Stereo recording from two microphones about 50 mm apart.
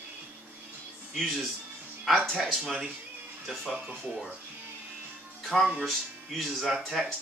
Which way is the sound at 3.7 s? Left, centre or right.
Right.